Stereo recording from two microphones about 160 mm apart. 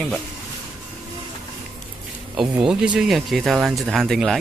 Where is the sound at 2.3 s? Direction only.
5° right (ahead or behind).